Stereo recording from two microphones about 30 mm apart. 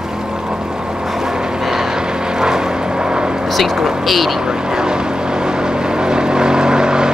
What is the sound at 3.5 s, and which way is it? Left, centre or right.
Vehicle, centre.